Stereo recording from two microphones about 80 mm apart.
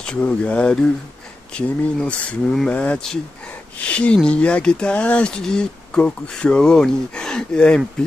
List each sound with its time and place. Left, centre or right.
0.0 s speech: centre
2.7 s speech: centre